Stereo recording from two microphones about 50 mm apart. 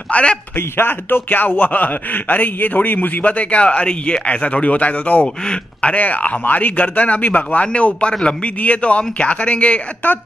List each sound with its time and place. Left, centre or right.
0.1 s a sound: left
0.6 s a man's voice: left
5.2 s speech: centre
10.0 s a man's voice: left